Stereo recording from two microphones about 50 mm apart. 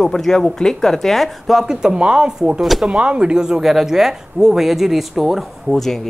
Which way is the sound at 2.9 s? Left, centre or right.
Right.